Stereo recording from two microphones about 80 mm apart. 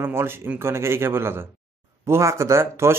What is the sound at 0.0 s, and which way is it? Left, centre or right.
Speech, right.